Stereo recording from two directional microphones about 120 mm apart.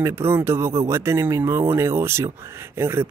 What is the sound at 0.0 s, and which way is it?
Speech, 20° right (ahead or behind).